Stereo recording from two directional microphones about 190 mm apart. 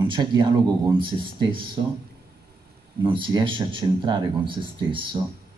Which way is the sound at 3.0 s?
25° right (ahead or behind).